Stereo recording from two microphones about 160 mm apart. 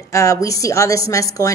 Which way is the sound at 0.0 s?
20° left (ahead or behind).